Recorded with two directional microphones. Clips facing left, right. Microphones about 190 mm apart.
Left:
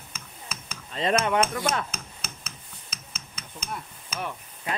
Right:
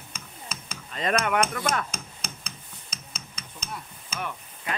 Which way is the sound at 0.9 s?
30° left (ahead or behind).